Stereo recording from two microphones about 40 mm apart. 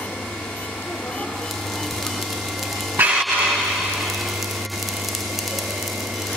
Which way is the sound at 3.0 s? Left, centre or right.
Right.